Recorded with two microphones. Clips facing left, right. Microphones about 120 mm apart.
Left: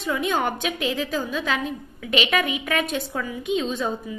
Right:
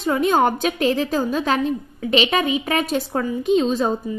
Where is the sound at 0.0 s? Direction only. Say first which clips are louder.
Right 6 dB; 40° right (ahead or behind).